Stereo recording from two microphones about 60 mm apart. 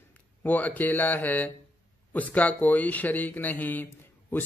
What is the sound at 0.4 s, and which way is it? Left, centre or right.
Speech, left.